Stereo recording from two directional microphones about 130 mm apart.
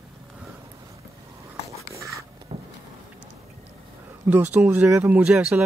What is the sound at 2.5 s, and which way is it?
Vehicle, 50° right (ahead or behind).